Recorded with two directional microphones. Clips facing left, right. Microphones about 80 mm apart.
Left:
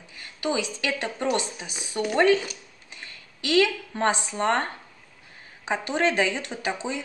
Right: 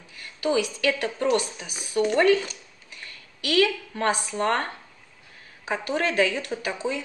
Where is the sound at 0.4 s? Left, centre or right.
Left.